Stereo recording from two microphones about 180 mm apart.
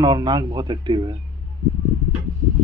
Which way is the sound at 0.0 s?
25° right (ahead or behind).